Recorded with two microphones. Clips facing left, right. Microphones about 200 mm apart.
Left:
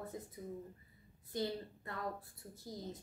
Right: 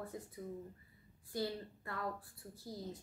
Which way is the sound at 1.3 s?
20° left (ahead or behind).